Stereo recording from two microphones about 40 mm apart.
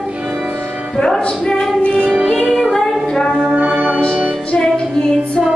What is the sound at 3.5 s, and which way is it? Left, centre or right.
Music, right.